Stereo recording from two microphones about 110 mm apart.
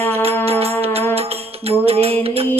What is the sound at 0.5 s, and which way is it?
Music, 65° right (ahead or behind).